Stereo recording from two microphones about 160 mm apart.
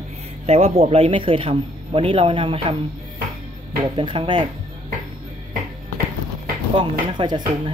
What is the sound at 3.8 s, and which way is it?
Speech, 30° right (ahead or behind).